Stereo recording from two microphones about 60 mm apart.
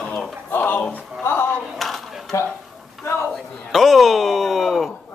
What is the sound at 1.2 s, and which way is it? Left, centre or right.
Speech, left.